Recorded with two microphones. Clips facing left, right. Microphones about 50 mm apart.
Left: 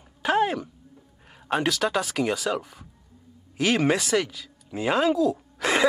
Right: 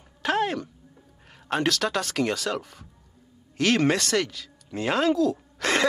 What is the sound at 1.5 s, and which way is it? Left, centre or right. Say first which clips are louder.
A man's voice: left 1 dB; centre.